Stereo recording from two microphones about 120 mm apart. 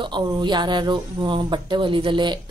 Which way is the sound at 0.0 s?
40° right (ahead or behind).